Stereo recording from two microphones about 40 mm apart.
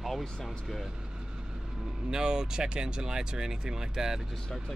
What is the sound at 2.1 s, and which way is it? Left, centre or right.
Speech, centre.